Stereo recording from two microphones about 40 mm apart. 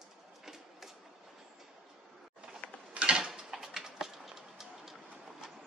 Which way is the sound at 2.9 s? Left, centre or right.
Right.